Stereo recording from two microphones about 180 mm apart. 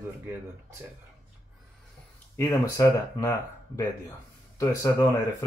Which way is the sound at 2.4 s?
15° left (ahead or behind).